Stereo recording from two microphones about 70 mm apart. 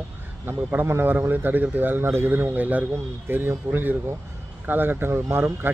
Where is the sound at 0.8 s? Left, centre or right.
Right.